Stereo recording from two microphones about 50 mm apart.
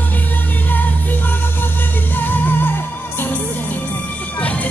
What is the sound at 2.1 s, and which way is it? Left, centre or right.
Music, left.